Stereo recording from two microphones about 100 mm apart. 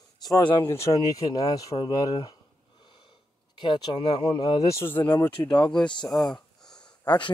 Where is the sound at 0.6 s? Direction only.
25° left (ahead or behind).